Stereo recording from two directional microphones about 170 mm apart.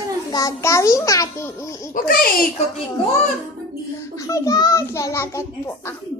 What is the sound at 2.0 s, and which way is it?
Speech, 60° left (ahead or behind).